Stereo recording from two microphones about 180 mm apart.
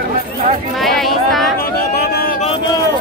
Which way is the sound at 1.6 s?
60° left (ahead or behind).